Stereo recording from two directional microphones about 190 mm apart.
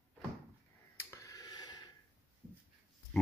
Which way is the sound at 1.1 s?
15° left (ahead or behind).